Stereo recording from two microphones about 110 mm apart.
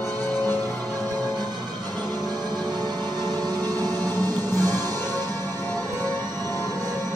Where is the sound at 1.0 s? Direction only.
35° right (ahead or behind).